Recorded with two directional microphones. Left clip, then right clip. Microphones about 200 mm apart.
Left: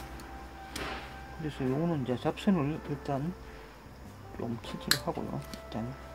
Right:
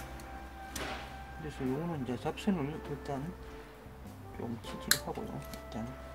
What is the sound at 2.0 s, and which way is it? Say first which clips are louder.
Speech: left 4 dB; 30° left (ahead or behind).